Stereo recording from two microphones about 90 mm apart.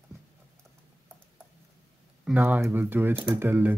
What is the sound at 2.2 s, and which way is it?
Speech, 20° right (ahead or behind).